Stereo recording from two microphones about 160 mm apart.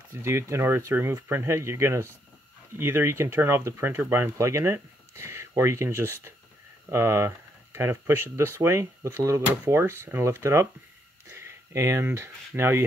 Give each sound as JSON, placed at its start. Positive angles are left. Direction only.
{"t": 0.1, "sound": "speech", "side_deg": -15}